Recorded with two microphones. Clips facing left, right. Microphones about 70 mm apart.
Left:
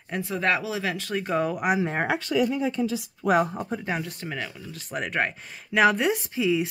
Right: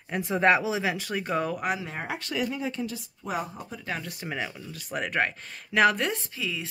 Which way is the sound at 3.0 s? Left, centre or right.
Left.